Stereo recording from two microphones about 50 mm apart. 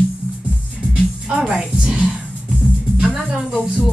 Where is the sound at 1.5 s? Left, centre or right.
Centre.